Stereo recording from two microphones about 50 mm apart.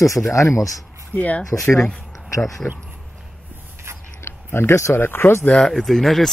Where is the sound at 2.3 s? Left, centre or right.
Left.